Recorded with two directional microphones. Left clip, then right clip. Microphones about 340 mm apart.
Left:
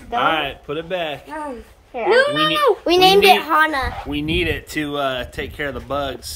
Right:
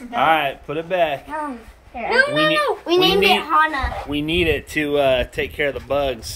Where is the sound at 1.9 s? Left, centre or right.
Centre.